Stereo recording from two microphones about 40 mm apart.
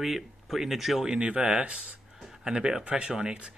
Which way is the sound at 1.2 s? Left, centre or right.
Right.